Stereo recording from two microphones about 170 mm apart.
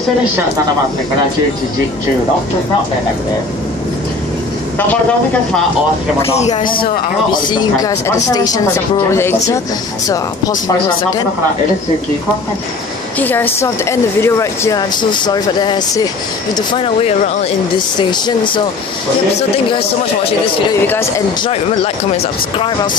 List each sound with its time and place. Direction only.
6.6 s speech: 60° left (ahead or behind)
7.2 s speech: 25° left (ahead or behind)
13.2 s speech: 10° left (ahead or behind); by 17.1 s 30° left (ahead or behind)
18.1 s speech: 25° left (ahead or behind)
21.5 s speech: 35° left (ahead or behind)